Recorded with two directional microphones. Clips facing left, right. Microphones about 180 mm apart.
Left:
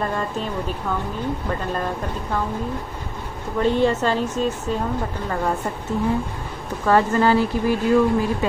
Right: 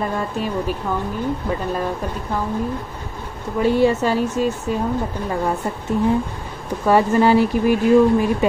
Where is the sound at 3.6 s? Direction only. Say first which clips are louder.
Right 2 dB; 10° right (ahead or behind).